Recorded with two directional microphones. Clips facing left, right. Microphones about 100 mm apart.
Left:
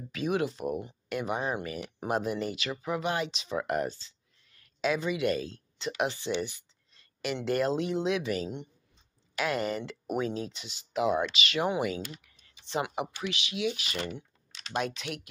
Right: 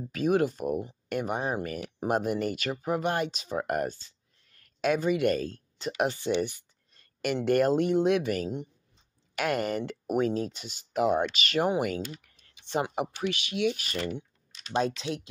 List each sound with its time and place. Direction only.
0.1 s speech: 45° right (ahead or behind)
14.8 s speech: 30° right (ahead or behind)